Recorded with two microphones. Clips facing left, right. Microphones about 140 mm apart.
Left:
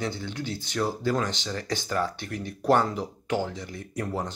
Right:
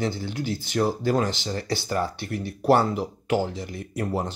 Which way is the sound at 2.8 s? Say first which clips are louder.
Right 4 dB; 10° right (ahead or behind).